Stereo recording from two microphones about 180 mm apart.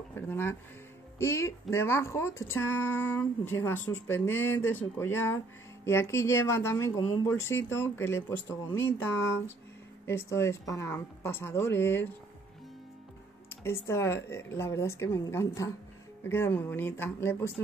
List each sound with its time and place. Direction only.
0.1 s speech: 10° left (ahead or behind)
13.7 s speech: 15° left (ahead or behind)